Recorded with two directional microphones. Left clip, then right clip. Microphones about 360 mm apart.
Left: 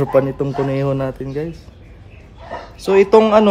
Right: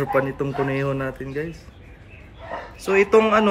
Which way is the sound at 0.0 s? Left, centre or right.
Centre.